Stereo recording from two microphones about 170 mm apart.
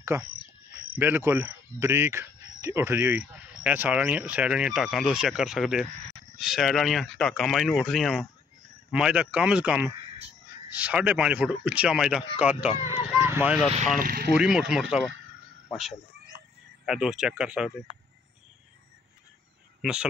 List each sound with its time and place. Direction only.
0.0 s speech: 15° right (ahead or behind)
12.8 s speech: 40° left (ahead or behind)
13.2 s vehicle: 10° right (ahead or behind)
14.0 s speech: 60° right (ahead or behind)
14.3 s speech: 5° right (ahead or behind)
16.8 s speech: 5° right (ahead or behind)
19.8 s speech: 5° right (ahead or behind)